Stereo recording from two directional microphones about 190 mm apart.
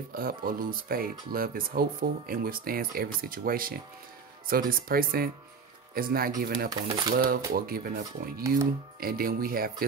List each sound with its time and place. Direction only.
0.1 s speech: 50° right (ahead or behind)